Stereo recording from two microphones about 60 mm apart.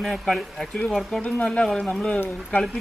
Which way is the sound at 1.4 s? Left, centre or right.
Centre.